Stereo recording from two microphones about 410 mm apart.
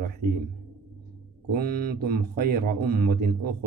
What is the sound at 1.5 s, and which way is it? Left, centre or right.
Speech, right.